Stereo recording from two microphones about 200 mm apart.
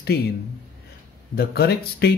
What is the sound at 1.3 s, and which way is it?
Speech, 50° left (ahead or behind).